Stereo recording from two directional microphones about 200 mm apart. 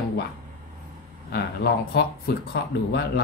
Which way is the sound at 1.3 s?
50° left (ahead or behind).